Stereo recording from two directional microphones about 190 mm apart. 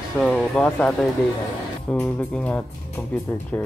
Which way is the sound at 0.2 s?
5° left (ahead or behind).